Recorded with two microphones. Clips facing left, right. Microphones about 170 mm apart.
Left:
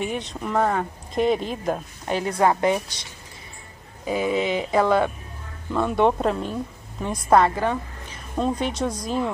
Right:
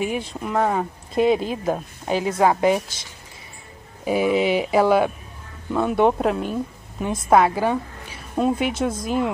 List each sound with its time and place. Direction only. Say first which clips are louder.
0.0 s speech: right 2 dB; 5° right (ahead or behind)
2.4 s speech: right 2 dB; 15° right (ahead or behind)
4.0 s speech: right 4 dB; 10° right (ahead or behind)